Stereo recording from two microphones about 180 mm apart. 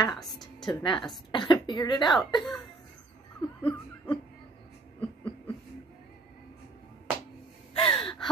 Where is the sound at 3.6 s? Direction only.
10° left (ahead or behind).